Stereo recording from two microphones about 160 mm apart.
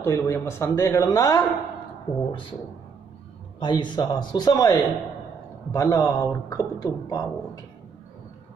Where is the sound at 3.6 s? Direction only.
30° left (ahead or behind).